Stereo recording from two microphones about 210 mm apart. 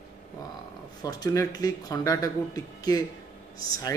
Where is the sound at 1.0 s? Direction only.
15° left (ahead or behind).